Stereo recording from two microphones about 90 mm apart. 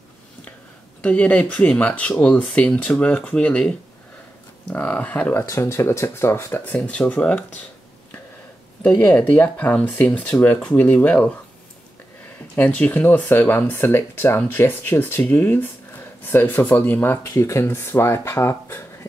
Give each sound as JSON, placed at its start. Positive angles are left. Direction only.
{"t": 1.0, "sound": "speech", "side_deg": 15}
{"t": 4.7, "sound": "speech", "side_deg": 15}
{"t": 5.4, "sound": "speech", "side_deg": 35}
{"t": 8.8, "sound": "speech", "side_deg": 15}
{"t": 12.5, "sound": "speech", "side_deg": 15}